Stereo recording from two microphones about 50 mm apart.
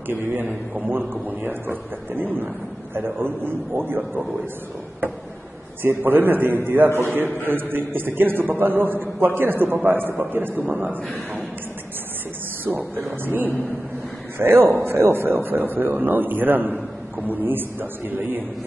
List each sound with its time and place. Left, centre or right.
0.8 s a man's voice: right
5.8 s a man's voice: right
12.6 s a man's voice: right